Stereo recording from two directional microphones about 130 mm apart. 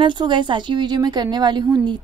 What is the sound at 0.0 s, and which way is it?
A woman's voice, 35° right (ahead or behind).